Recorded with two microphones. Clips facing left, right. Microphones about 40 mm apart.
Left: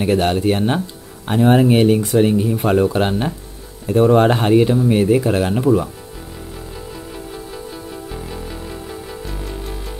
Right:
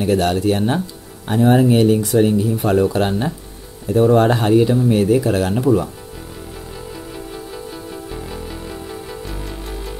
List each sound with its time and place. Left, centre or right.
0.0 s speech: left
1.2 s speech: left
2.8 s speech: left
3.8 s speech: left
4.8 s speech: centre
8.1 s music: centre